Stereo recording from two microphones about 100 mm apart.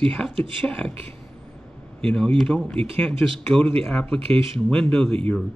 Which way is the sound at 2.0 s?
5° left (ahead or behind).